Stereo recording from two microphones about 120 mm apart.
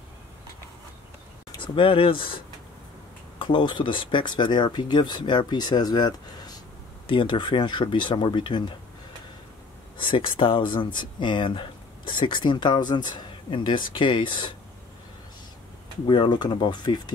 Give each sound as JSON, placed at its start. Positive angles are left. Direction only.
{"t": 1.5, "sound": "speech", "side_deg": 45}
{"t": 9.9, "sound": "speech", "side_deg": 45}
{"t": 16.1, "sound": "speech", "side_deg": 40}